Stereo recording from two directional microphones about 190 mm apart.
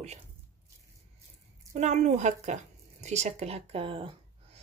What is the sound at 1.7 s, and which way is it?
Speech, 35° right (ahead or behind).